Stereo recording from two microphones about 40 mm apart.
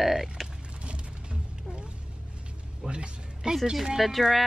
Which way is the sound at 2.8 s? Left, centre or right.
Right.